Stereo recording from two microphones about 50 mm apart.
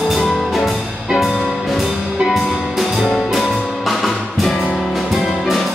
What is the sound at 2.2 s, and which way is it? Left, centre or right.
Music, centre.